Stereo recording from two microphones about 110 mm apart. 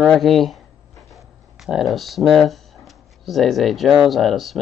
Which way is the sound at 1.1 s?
Centre (ahead or behind).